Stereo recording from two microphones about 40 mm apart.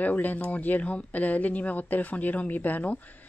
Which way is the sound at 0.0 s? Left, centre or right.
Left.